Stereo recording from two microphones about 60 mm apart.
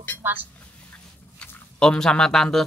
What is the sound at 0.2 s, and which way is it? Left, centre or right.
Speech, right.